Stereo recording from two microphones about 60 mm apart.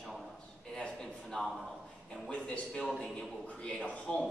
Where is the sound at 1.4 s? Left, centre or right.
Centre.